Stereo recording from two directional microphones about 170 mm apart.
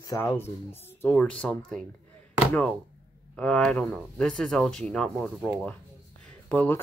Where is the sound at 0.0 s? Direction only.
15° left (ahead or behind).